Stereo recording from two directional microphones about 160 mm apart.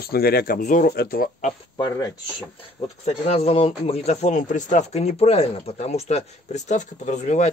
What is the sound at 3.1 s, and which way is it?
Speech, 40° left (ahead or behind).